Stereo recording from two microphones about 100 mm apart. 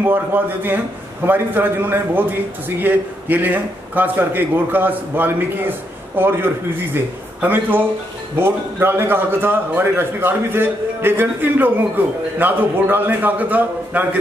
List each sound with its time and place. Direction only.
0.0 s a man's voice: 20° right (ahead or behind)